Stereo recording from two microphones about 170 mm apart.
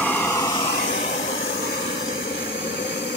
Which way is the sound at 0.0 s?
10° left (ahead or behind).